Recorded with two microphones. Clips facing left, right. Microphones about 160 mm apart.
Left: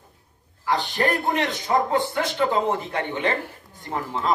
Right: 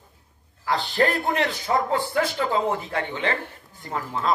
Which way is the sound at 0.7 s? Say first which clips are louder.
Right 2 dB; 15° left (ahead or behind).